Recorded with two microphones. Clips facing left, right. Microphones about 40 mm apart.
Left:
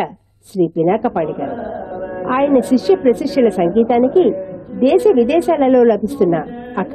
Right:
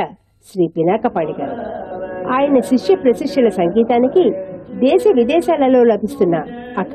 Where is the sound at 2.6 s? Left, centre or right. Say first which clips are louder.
Even; right.